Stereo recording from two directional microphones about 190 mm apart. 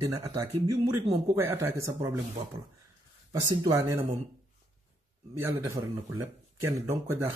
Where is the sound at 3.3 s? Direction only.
15° right (ahead or behind).